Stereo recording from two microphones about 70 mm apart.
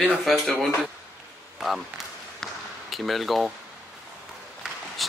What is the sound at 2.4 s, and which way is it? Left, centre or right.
Basketball bounce, centre.